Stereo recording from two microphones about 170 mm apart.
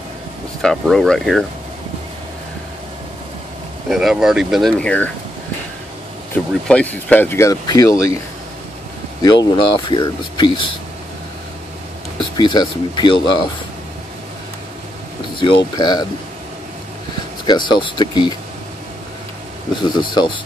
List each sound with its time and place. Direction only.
0.6 s speech: centre (ahead or behind)
3.9 s speech: centre (ahead or behind)
6.7 s speech: 10° left (ahead or behind)
9.2 s speech: 25° left (ahead or behind)
12.2 s speech: 25° left (ahead or behind)
15.3 s speech: 30° left (ahead or behind)
17.5 s speech: 25° left (ahead or behind)
19.7 s speech: 25° left (ahead or behind)